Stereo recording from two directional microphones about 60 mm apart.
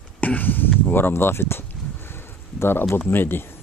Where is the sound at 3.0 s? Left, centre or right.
Left.